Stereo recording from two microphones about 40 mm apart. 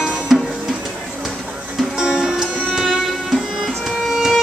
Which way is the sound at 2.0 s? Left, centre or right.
Centre.